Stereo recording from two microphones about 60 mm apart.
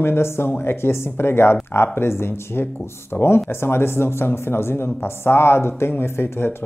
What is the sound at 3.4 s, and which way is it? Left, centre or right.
Speech, left.